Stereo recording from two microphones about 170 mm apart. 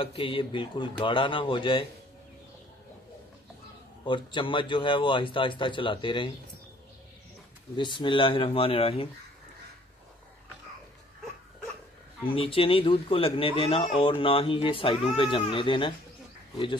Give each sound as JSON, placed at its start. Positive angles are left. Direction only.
{"t": 0.0, "sound": "a man's voice", "side_deg": 30}
{"t": 4.0, "sound": "a man's voice", "side_deg": 30}
{"t": 7.7, "sound": "speech", "side_deg": 30}
{"t": 12.3, "sound": "a man's voice", "side_deg": 30}